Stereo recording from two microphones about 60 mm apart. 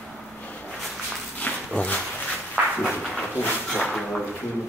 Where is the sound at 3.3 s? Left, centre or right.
Left.